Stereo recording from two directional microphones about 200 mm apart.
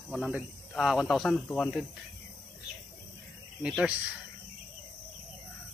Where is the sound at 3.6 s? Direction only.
5° right (ahead or behind).